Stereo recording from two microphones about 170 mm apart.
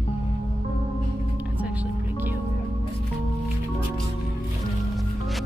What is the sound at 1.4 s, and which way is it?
Music, 10° right (ahead or behind).